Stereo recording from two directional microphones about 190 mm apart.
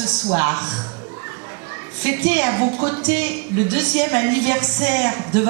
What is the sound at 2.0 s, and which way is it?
A woman's voice, 10° right (ahead or behind).